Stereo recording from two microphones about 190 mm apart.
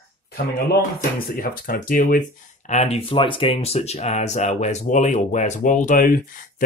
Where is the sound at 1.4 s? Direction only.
50° left (ahead or behind).